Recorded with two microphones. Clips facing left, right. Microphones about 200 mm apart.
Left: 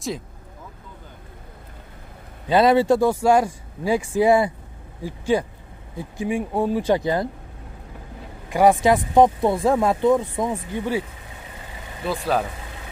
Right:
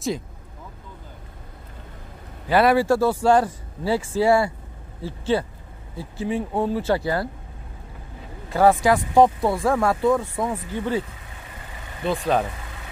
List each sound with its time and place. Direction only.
2.4 s speech: 20° left (ahead or behind)
8.5 s speech: 15° left (ahead or behind)
12.1 s speech: centre (ahead or behind)